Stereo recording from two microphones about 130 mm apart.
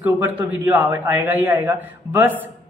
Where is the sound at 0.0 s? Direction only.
15° right (ahead or behind).